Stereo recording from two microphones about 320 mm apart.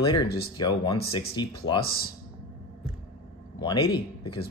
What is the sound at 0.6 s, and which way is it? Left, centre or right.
Speech, centre.